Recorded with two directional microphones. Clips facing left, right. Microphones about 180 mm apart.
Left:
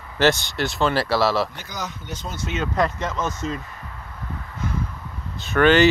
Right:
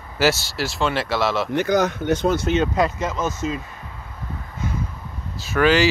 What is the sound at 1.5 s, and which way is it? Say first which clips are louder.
Speech: right 14 dB; 65° right (ahead or behind).